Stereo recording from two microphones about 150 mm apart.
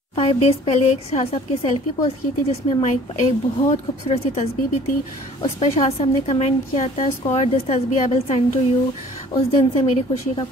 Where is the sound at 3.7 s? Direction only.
45° left (ahead or behind).